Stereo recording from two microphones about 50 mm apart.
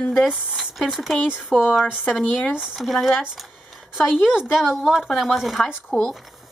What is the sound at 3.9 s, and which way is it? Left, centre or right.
Speech, centre.